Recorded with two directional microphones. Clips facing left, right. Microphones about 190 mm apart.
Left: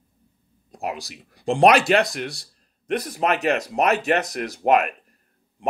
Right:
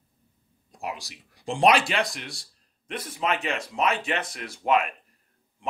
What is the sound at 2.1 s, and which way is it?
A man's voice, 40° left (ahead or behind).